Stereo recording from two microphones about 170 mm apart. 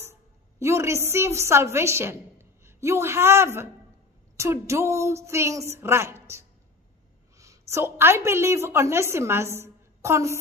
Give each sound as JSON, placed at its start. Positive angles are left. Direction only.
{"t": 0.0, "sound": "a woman's voice", "side_deg": -15}